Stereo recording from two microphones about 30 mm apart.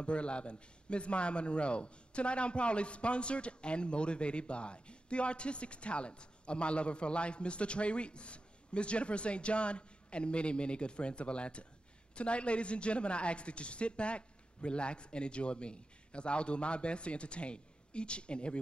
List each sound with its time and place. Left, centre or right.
0.0 s a man's voice: left